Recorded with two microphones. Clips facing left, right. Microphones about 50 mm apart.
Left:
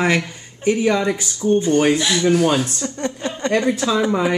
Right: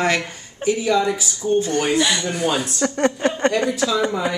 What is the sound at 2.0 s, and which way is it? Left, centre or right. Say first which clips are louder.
Speech: left 4 dB; centre.